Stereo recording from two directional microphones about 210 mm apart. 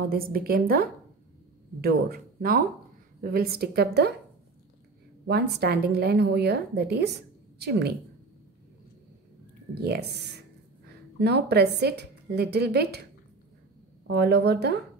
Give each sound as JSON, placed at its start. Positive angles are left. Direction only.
{"t": 0.1, "sound": "a woman's voice", "side_deg": -45}
{"t": 5.2, "sound": "a woman's voice", "side_deg": -50}
{"t": 9.8, "sound": "a woman's voice", "side_deg": -50}
{"t": 14.0, "sound": "a woman's voice", "side_deg": -50}